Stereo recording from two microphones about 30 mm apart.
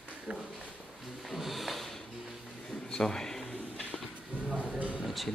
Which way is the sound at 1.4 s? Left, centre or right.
Centre.